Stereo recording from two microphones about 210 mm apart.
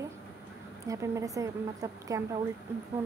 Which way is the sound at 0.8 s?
15° right (ahead or behind).